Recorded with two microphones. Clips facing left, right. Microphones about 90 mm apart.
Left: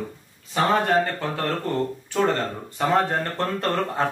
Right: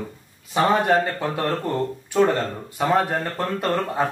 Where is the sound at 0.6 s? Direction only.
15° right (ahead or behind).